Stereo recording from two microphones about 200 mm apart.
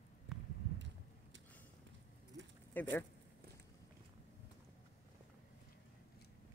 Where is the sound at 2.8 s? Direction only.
10° left (ahead or behind).